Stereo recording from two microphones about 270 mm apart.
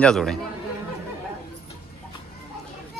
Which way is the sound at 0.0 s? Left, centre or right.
Centre.